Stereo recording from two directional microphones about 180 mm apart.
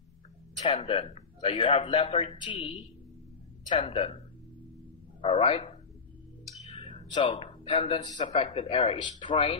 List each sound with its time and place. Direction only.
0.7 s a man's voice: 35° left (ahead or behind)
3.7 s a man's voice: 30° left (ahead or behind)
5.2 s a man's voice: 30° left (ahead or behind)
6.7 s a sound: 25° left (ahead or behind)
8.1 s a man's voice: 40° left (ahead or behind)